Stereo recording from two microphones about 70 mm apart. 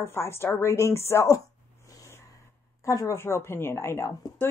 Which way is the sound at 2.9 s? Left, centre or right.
Left.